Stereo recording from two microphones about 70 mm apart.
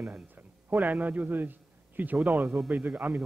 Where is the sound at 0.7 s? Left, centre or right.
Right.